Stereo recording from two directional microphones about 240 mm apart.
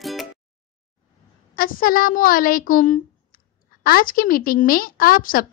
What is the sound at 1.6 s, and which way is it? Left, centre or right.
A woman's voice, left.